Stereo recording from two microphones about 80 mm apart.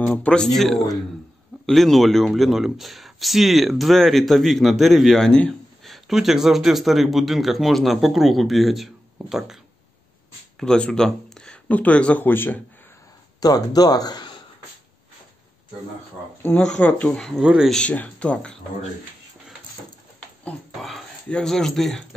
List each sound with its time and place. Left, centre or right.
0.0 s speech: left
0.3 s speech: centre
10.6 s speech: centre
12.3 s speech: left
13.4 s speech: left
16.5 s speech: centre
17.4 s speech: centre
17.6 s speech: centre
21.3 s speech: centre